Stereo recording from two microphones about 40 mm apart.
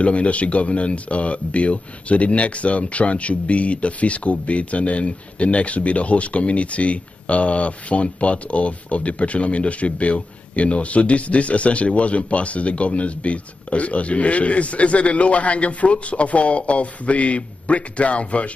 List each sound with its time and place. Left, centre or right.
0.0 s speech: left